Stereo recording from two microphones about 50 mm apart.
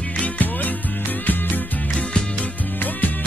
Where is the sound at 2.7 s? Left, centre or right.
Left.